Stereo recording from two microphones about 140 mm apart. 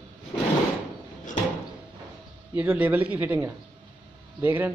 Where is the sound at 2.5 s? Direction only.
10° right (ahead or behind).